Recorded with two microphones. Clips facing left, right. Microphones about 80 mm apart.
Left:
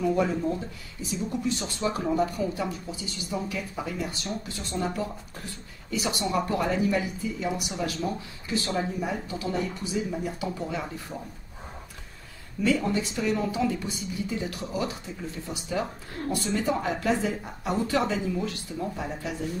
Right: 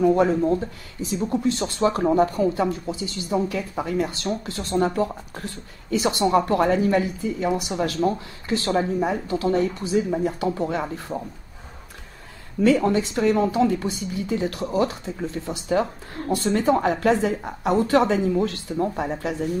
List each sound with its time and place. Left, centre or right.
0.0 s speech: right
12.5 s speech: right